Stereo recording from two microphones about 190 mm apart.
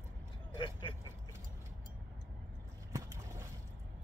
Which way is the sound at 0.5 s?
25° left (ahead or behind).